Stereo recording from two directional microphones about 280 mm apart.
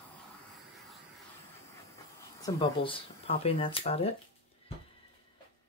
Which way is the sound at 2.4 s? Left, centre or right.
Centre.